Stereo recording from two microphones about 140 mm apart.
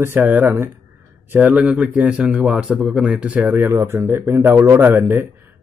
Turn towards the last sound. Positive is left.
turn(degrees=-15)  # may be behind; listen again after turning